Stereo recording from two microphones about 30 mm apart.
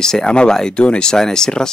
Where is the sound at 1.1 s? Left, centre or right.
Centre.